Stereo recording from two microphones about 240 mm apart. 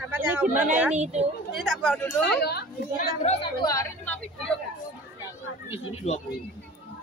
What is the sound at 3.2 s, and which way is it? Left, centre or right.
Speech, left.